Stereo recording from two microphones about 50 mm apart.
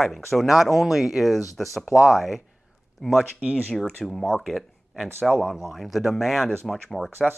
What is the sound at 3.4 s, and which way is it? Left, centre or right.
Speech, right.